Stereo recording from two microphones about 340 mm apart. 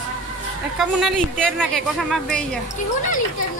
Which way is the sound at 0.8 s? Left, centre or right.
Centre.